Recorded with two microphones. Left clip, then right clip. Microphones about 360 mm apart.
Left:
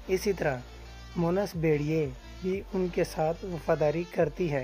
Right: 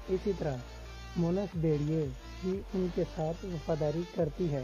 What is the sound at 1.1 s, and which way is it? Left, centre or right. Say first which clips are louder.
Speech: left 5 dB; left.